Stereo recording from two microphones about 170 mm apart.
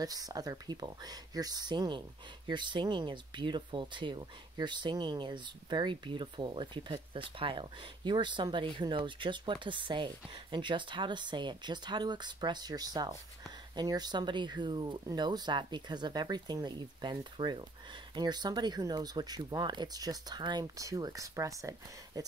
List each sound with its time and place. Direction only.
0.0 s speech: 20° right (ahead or behind)